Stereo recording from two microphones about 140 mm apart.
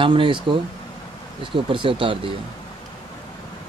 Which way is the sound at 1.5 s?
40° right (ahead or behind).